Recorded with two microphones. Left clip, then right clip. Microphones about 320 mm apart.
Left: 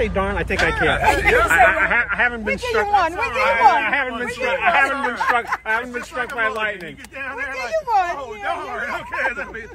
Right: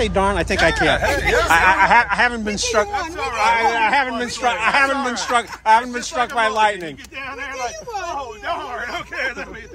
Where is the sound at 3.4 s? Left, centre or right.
Centre.